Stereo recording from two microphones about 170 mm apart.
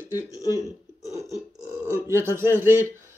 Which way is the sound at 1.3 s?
15° right (ahead or behind).